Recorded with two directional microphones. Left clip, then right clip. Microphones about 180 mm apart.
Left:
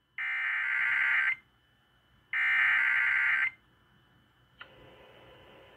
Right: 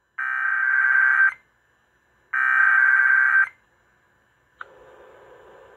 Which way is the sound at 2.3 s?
5° right (ahead or behind).